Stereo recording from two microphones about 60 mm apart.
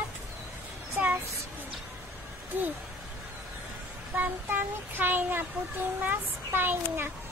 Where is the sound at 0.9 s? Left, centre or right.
Right.